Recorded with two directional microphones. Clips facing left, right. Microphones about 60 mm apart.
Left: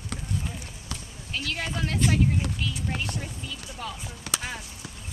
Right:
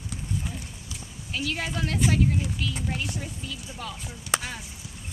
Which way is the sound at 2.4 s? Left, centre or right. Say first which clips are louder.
Left 1 dB; left.